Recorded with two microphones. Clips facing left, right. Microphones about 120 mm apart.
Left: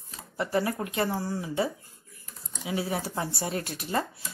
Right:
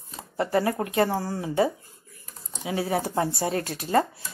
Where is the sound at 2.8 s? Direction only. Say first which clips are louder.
Right 6 dB; 50° right (ahead or behind).